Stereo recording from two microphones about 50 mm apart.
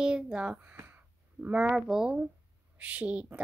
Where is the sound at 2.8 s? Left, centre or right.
Right.